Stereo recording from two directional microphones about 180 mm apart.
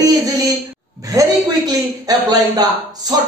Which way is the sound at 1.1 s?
20° right (ahead or behind).